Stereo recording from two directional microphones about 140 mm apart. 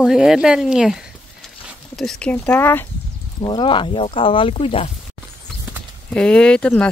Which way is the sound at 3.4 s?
35° left (ahead or behind).